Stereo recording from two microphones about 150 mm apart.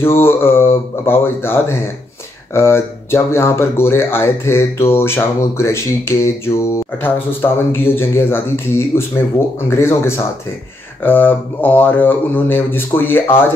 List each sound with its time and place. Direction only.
0.0 s speech: 15° left (ahead or behind)